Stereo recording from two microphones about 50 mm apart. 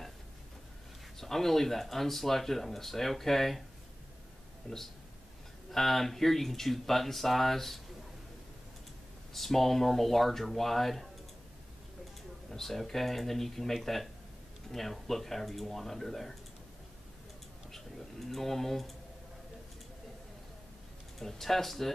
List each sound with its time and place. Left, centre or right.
1.2 s speech: centre
4.7 s speech: centre
9.3 s speech: centre
12.4 s speech: centre
17.7 s a sound: centre
21.2 s speech: centre